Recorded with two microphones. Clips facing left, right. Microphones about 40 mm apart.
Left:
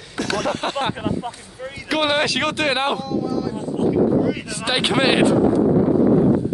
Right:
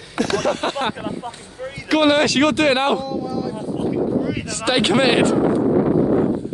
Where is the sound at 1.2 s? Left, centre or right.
Left.